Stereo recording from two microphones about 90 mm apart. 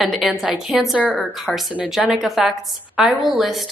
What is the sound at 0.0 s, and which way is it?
Speech, centre (ahead or behind).